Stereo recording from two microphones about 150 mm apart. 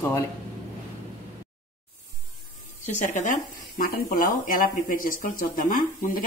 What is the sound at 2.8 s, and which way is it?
Speech, 55° left (ahead or behind).